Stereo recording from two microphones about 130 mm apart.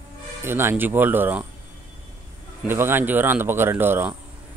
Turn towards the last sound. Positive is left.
turn(degrees=-15)  # may be behind; listen again after turning